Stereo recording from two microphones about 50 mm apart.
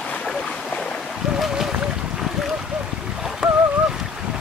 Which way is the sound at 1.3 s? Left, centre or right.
Centre.